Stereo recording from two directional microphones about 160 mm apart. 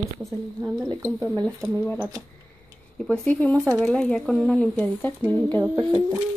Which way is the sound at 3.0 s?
10° left (ahead or behind).